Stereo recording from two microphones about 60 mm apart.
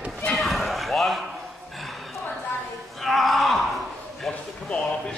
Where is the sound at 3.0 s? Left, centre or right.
Centre.